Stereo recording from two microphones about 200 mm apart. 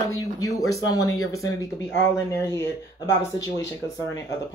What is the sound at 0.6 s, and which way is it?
Speech, 15° left (ahead or behind).